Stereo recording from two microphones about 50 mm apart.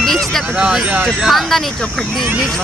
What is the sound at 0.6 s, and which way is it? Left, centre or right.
Speech, centre.